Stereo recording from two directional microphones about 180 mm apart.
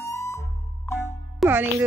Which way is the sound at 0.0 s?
15° left (ahead or behind).